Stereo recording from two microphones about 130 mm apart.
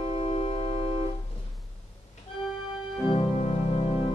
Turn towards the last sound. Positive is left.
turn(degrees=35)  # may be behind; listen again after turning